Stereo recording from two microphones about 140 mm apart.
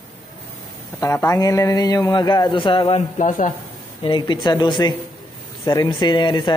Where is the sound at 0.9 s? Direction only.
20° left (ahead or behind); by 3.0 s 40° left (ahead or behind).